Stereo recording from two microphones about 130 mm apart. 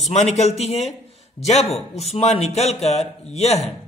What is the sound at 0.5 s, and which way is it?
A man's voice, 55° left (ahead or behind).